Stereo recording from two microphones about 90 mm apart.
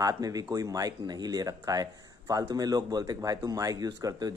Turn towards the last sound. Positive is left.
turn(degrees=-45)  # may be behind; listen again after turning